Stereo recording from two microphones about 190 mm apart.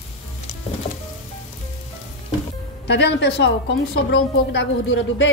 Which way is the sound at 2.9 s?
65° left (ahead or behind).